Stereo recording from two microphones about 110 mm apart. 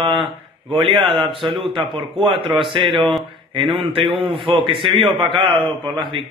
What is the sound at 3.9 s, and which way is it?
A man's voice, 50° right (ahead or behind).